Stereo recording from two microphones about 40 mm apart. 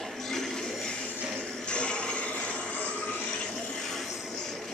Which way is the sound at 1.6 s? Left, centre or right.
Left.